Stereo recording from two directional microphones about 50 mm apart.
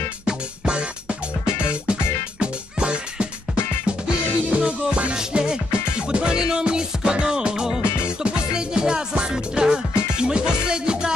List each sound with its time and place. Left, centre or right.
0.3 s music: centre
4.5 s music: centre